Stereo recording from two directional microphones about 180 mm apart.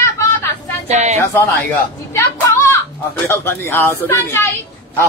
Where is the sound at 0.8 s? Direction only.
40° right (ahead or behind).